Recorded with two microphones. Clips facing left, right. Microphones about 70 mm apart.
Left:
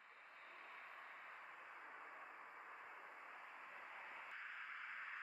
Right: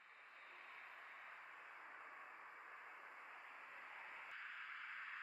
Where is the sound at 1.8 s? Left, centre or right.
Centre.